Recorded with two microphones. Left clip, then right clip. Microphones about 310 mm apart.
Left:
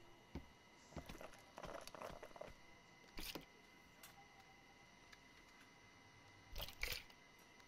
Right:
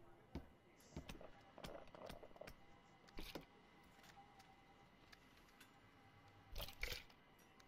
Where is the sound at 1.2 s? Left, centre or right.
Left.